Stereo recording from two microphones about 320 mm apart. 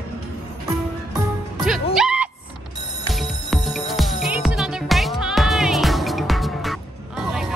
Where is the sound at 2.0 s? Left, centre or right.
Centre.